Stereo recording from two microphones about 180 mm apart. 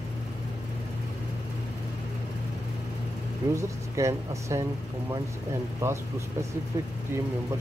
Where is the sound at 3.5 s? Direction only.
15° right (ahead or behind).